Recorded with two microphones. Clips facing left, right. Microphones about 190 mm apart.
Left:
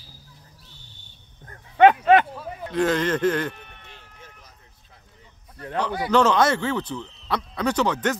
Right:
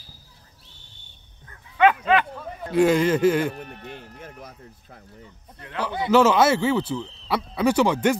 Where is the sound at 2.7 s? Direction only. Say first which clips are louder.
Right 4 dB; 10° right (ahead or behind).